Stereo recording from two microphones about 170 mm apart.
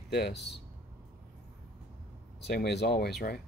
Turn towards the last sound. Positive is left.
turn(degrees=60)  # may be behind; listen again after turning